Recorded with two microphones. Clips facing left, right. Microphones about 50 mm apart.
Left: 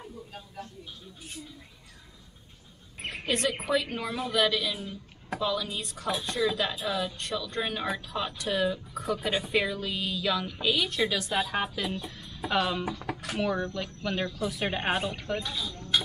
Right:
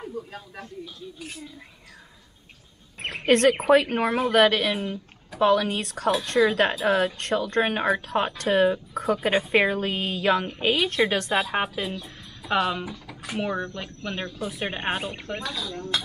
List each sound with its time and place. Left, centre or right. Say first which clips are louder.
3.0 s a woman's voice: right 9 dB; right
11.5 s a woman's voice: right 4 dB; right
12.8 s speech: left 3 dB; left
13.2 s speech: right 2 dB; right
14.7 s speech: even; centre
15.4 s speech: right 4 dB; right